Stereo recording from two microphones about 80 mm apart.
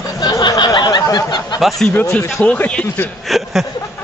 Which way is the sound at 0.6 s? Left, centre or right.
Left.